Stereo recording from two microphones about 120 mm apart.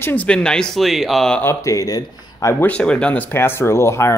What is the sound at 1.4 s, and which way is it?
Speech, 25° left (ahead or behind).